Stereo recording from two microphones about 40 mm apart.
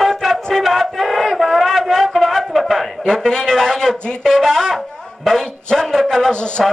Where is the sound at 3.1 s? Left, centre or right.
Centre.